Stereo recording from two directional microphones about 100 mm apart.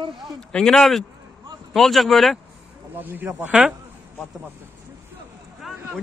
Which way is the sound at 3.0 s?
20° right (ahead or behind).